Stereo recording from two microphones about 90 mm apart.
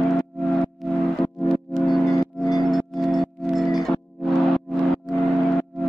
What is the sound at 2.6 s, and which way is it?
Music, centre (ahead or behind).